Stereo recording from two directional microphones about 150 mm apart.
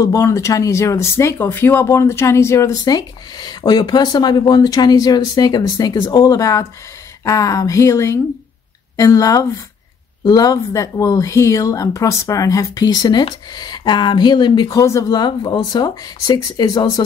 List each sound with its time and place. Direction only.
0.0 s speech: 20° left (ahead or behind)